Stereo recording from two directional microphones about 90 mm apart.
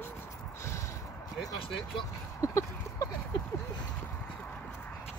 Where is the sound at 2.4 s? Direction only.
35° left (ahead or behind).